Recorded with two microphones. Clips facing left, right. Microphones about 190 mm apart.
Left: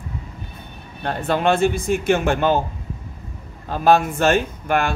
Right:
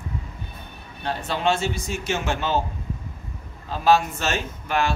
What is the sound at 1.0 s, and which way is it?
Speech, 55° left (ahead or behind).